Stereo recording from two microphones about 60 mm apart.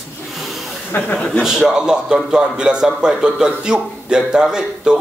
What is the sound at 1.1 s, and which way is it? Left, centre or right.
Speech, centre.